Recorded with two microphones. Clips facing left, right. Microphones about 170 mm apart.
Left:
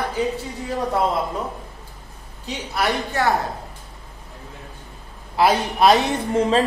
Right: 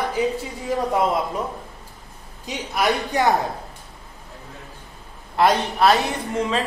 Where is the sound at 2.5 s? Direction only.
15° right (ahead or behind).